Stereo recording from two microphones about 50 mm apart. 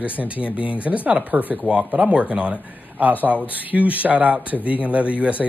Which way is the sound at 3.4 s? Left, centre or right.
Right.